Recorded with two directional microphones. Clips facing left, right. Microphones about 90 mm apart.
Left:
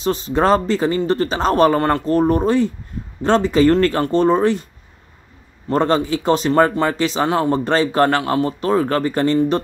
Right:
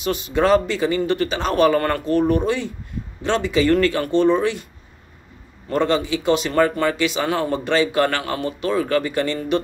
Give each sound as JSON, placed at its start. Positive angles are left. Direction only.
{"t": 0.0, "sound": "speech", "side_deg": 35}
{"t": 1.8, "sound": "speech", "side_deg": 25}
{"t": 2.0, "sound": "speech", "side_deg": 35}
{"t": 5.7, "sound": "speech", "side_deg": 40}